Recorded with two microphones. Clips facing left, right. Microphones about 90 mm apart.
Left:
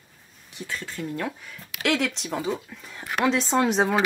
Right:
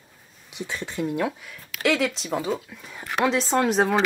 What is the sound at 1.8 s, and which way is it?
Speech, centre (ahead or behind).